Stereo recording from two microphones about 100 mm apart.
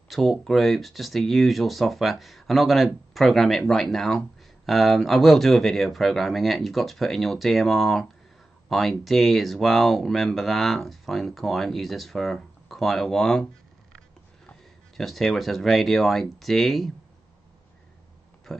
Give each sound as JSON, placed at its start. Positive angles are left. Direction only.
{"t": 0.1, "sound": "speech", "side_deg": 0}
{"t": 15.0, "sound": "speech", "side_deg": 0}
{"t": 18.5, "sound": "speech", "side_deg": 0}